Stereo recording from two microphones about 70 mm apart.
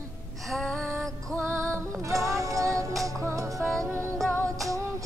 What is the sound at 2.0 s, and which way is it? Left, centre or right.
Music, right.